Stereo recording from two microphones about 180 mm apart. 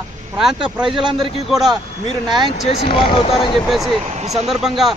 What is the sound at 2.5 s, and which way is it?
Speech, 30° left (ahead or behind).